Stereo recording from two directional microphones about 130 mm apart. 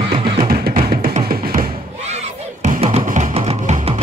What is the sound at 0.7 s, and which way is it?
Music, 85° right.